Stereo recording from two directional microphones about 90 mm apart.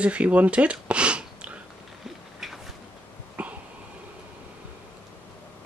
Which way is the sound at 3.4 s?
15° right (ahead or behind).